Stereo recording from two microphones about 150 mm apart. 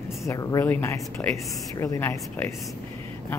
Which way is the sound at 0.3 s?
20° left (ahead or behind).